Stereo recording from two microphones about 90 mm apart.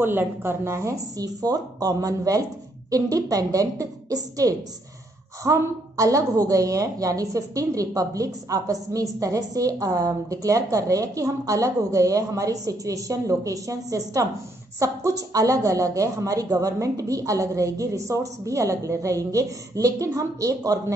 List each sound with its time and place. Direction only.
0.0 s a woman's voice: 25° right (ahead or behind); by 20.8 s 40° right (ahead or behind)